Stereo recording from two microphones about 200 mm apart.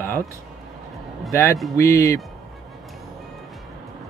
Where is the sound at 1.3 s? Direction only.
15° left (ahead or behind).